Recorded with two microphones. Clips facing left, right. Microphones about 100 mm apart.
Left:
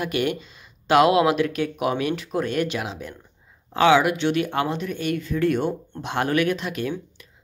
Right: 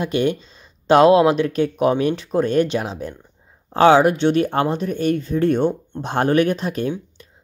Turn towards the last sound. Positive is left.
turn(degrees=-35)  # may be behind; listen again after turning